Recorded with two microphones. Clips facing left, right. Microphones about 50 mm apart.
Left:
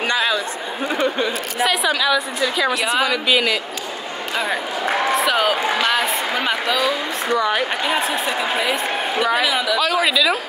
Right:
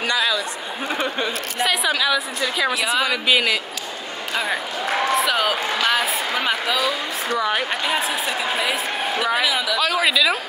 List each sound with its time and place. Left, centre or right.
0.0 s chatter: left
0.8 s a sound: centre
1.6 s a woman's voice: centre
5.1 s a woman's voice: centre